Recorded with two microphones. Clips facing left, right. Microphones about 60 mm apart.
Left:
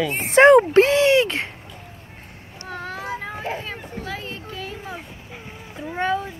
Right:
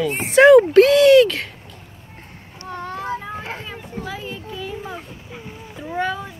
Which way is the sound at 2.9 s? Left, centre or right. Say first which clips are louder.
Right 4 dB; centre.